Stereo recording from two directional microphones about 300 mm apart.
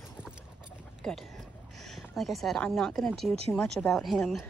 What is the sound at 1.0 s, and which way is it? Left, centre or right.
Speech, centre.